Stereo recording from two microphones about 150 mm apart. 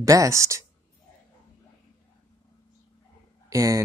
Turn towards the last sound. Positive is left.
turn(degrees=-25)  # may be behind; listen again after turning